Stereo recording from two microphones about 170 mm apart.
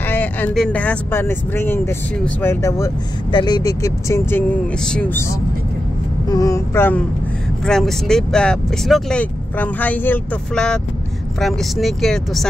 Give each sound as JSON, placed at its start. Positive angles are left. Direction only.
{"t": 0.1, "sound": "speech", "side_deg": 10}
{"t": 3.3, "sound": "speech", "side_deg": 25}
{"t": 6.2, "sound": "speech", "side_deg": 20}